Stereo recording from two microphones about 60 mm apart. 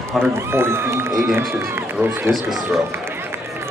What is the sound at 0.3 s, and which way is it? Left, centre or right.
Speech, right.